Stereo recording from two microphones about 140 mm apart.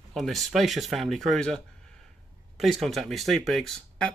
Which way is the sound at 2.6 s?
Centre (ahead or behind).